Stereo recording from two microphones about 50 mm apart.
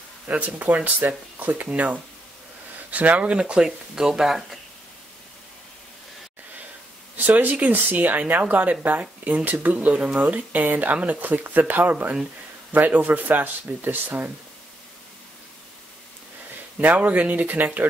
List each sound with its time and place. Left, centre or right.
0.3 s speech: right; by 4.6 s centre
7.2 s speech: right
16.8 s speech: right